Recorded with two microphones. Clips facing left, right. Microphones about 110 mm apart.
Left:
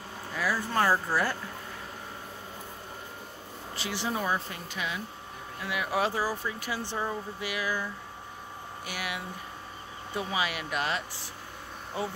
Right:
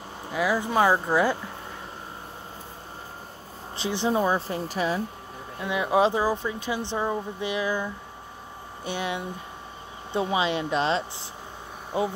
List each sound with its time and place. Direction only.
0.3 s speech: 20° right (ahead or behind)
3.7 s speech: 25° right (ahead or behind)
5.6 s speech: 25° right (ahead or behind)